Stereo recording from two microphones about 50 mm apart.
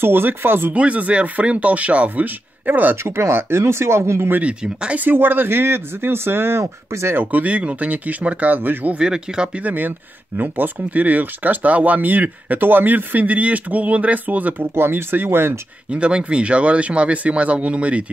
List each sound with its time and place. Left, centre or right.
0.0 s speech: right
0.7 s speech: right
3.0 s speech: right
4.4 s speech: right
5.0 s speech: right
6.6 s speech: right
7.2 s speech: right
8.9 s speech: centre
9.6 s speech: right
14.8 s speech: right
15.9 s speech: right